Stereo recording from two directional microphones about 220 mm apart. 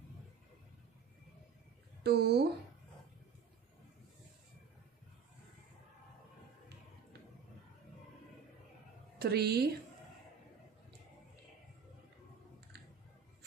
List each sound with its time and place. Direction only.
2.0 s a woman's voice: 50° right (ahead or behind)
9.2 s a woman's voice: 45° right (ahead or behind)